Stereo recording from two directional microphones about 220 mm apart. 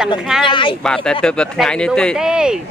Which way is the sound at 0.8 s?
5° left (ahead or behind).